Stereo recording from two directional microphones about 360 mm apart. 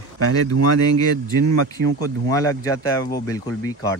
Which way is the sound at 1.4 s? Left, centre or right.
Right.